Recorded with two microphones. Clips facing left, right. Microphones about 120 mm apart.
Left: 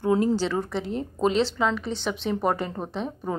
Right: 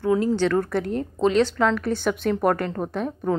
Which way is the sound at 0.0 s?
20° left (ahead or behind).